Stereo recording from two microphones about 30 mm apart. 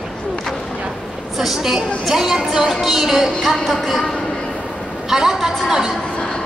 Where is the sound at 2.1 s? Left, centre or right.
Centre.